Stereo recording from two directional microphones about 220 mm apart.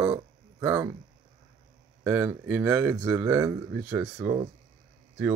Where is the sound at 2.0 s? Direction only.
10° right (ahead or behind).